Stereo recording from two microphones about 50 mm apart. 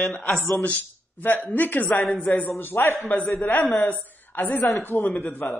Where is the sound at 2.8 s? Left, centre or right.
Left.